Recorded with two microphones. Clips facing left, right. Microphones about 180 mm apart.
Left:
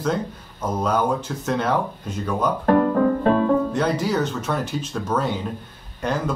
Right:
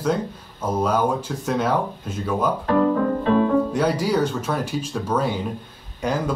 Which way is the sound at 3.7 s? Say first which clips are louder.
Right 1 dB; 10° right (ahead or behind).